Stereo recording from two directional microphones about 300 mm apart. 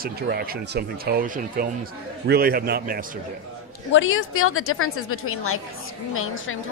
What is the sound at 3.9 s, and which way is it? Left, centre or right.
A woman's voice, left.